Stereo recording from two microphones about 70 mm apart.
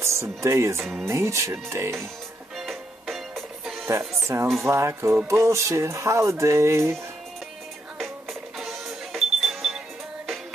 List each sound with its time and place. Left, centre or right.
0.0 s speech: right
2.5 s music: centre
4.3 s speech: right
8.0 s music: centre